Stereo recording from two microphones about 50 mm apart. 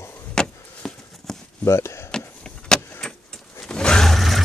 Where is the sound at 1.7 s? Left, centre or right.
Left.